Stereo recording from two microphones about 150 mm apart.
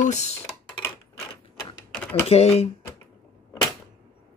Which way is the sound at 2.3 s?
40° left (ahead or behind).